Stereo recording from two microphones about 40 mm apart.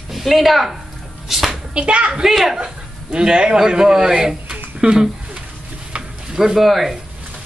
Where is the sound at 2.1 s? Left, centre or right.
Centre.